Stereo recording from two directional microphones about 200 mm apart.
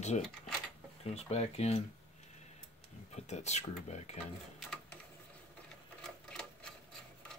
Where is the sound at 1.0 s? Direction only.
30° left (ahead or behind).